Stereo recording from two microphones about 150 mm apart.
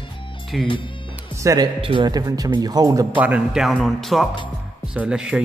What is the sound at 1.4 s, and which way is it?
Speech, 20° right (ahead or behind).